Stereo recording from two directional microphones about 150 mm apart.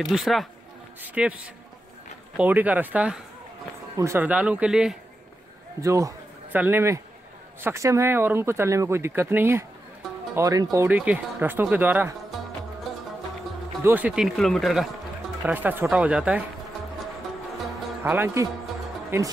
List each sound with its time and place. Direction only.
0.0 s speech: centre (ahead or behind)
5.8 s a sound: 20° right (ahead or behind)
6.6 s speech: 15° right (ahead or behind)
10.9 s speech: 10° right (ahead or behind)
13.8 s speech: 10° right (ahead or behind)
15.4 s speech: 10° right (ahead or behind)
18.0 s speech: 15° right (ahead or behind)